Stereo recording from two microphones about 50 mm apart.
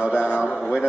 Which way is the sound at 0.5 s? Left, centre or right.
Centre.